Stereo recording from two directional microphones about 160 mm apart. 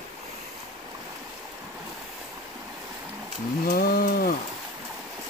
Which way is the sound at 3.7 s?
70° left (ahead or behind).